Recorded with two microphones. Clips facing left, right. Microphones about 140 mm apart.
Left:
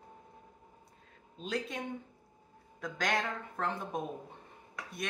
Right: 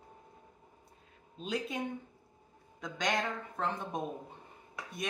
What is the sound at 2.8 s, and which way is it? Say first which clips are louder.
A woman's voice: even; centre (ahead or behind).